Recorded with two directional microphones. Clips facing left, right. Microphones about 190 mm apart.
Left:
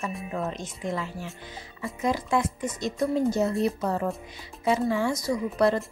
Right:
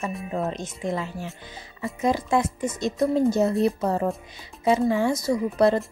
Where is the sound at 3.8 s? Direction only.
30° right (ahead or behind).